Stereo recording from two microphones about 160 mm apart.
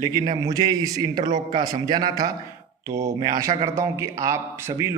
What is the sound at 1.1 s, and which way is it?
Speech, 50° right (ahead or behind).